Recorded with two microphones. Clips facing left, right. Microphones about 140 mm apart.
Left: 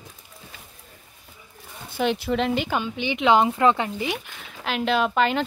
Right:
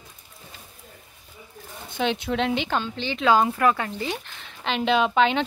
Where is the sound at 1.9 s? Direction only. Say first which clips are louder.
Left 2 dB; 5° left (ahead or behind).